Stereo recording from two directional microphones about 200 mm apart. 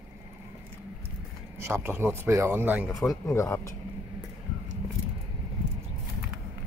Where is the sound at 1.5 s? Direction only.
10° right (ahead or behind).